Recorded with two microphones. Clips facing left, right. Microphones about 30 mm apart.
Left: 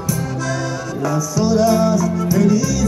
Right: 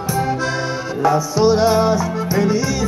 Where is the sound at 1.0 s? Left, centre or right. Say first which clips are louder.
Right 5 dB; right.